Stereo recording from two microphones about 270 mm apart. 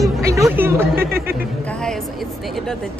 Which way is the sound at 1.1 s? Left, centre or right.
Right.